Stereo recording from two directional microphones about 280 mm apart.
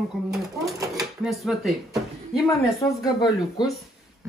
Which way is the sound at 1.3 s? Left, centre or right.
Centre.